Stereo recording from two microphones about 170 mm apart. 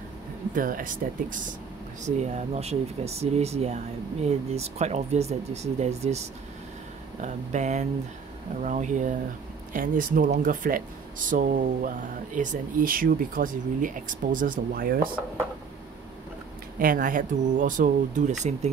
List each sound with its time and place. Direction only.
0.6 s speech: 55° right (ahead or behind)
2.0 s speech: 40° right (ahead or behind); by 15.0 s 60° right (ahead or behind)
16.7 s speech: 55° right (ahead or behind)